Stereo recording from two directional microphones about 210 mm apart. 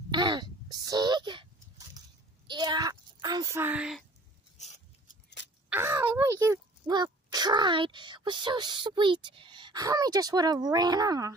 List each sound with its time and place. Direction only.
0.1 s a sound: 20° right (ahead or behind)
2.4 s a child's voice: 20° right (ahead or behind)
5.7 s speech: 10° right (ahead or behind)